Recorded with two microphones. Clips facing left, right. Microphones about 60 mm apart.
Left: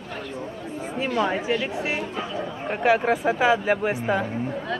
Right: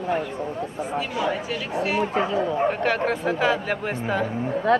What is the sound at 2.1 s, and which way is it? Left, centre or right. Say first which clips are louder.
Speech: right 8 dB; right.